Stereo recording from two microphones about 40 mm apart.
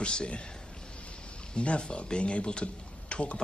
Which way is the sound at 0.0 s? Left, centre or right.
Left.